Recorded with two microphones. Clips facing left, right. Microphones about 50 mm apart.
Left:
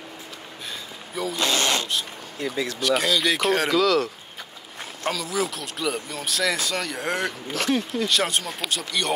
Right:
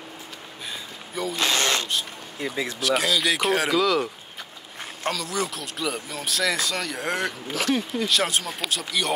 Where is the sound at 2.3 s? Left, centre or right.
Centre.